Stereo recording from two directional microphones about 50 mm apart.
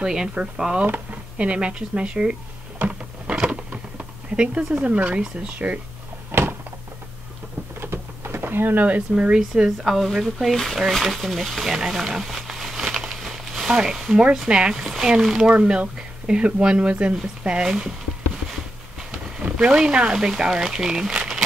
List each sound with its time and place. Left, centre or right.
0.0 s speech: centre
2.9 s a sound: right
4.4 s speech: right
6.3 s a sound: right
7.8 s a sound: right
8.4 s speech: right
9.1 s speech: right
9.4 s speech: centre
10.5 s speech: centre
13.1 s a sound: centre
14.1 s speech: centre
19.5 s speech: centre